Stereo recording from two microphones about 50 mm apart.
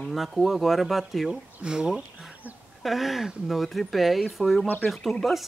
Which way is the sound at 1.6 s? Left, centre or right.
Centre.